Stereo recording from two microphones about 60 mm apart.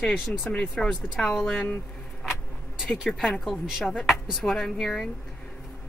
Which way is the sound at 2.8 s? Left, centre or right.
Centre.